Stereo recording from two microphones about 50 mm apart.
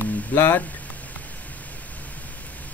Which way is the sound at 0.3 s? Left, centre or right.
Left.